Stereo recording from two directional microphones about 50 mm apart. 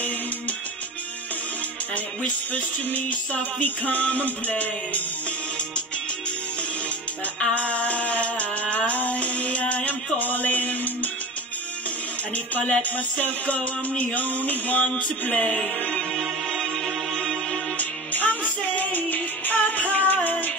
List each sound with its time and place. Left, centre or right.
2.2 s music: left
7.3 s music: left
12.5 s music: left
17.7 s music: left